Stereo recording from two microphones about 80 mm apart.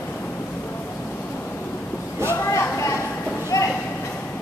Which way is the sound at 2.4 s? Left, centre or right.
Left.